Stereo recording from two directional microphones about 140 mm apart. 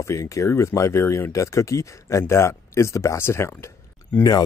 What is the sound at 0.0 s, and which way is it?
Speech, 20° left (ahead or behind).